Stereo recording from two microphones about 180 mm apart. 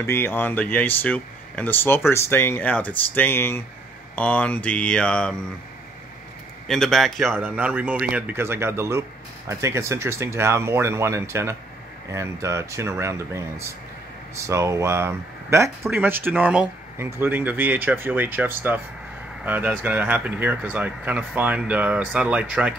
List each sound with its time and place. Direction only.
0.0 s speech: 15° left (ahead or behind)
6.7 s a man's voice: centre (ahead or behind)
7.3 s speech: 10° right (ahead or behind)